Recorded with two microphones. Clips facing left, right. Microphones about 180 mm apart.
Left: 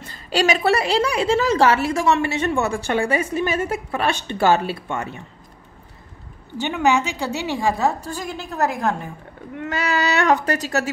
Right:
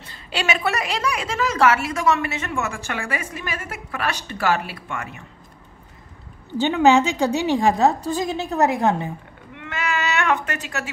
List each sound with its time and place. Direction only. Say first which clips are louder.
0.0 s a woman's voice: left 6 dB; 40° left (ahead or behind)
6.7 s a woman's voice: right 3 dB; 15° right (ahead or behind)
9.6 s a woman's voice: left 4 dB; 40° left (ahead or behind)